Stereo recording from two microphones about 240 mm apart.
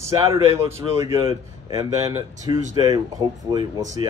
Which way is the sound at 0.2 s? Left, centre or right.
Centre.